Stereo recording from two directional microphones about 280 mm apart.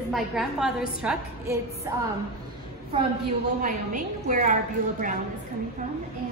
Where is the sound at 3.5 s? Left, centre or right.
Right.